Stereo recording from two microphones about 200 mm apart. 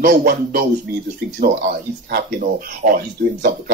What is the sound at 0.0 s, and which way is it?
Speech, 50° right (ahead or behind).